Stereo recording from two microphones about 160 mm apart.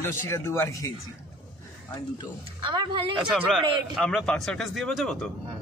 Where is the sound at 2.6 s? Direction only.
30° right (ahead or behind).